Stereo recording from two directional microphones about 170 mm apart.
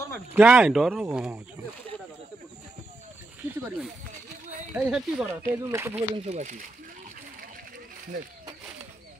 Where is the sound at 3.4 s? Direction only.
5° right (ahead or behind).